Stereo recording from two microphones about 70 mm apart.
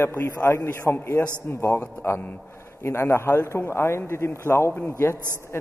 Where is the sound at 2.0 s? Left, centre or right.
Left.